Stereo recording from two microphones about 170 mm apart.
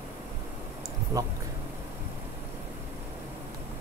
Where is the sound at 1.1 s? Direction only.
20° right (ahead or behind).